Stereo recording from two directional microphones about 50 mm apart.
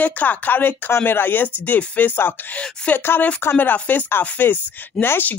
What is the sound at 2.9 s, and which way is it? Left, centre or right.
Speech, left.